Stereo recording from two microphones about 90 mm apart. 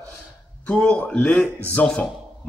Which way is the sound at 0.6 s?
15° left (ahead or behind).